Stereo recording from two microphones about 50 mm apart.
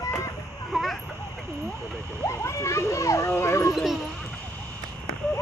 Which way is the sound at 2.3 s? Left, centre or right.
Left.